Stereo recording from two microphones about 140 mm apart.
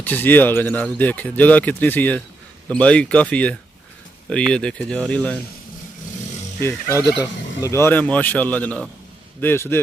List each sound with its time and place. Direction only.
0.0 s speech: 15° left (ahead or behind)
6.6 s speech: 15° left (ahead or behind)